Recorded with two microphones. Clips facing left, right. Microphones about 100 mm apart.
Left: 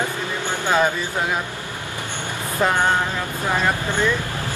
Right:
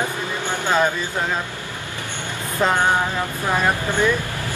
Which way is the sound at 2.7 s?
15° right (ahead or behind).